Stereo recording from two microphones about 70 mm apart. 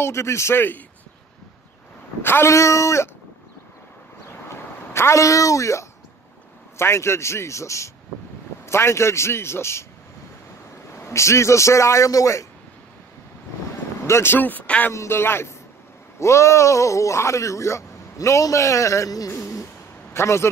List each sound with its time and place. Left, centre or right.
0.0 s a man's voice: left
2.2 s a man's voice: left
2.5 s speech: left
4.3 s a sound: left
6.8 s a man's voice: left
11.0 s speech: left
14.0 s a man's voice: left
14.9 s a man's voice: left
19.4 s a sound: left
20.2 s a man's voice: left